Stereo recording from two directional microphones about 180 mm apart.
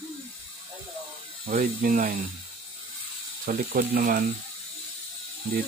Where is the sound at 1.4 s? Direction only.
50° right (ahead or behind).